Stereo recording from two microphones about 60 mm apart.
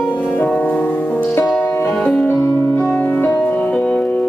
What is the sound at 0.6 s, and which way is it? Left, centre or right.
Music, left.